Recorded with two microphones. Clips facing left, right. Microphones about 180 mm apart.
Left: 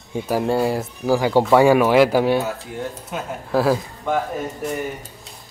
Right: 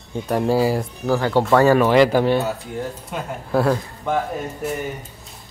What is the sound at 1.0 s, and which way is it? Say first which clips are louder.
Speech: left 2 dB; 10° left (ahead or behind).